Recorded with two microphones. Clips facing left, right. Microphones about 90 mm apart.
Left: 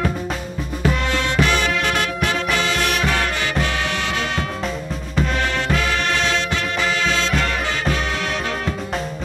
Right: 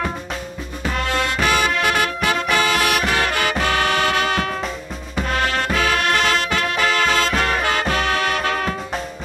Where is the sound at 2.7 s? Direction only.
60° right (ahead or behind).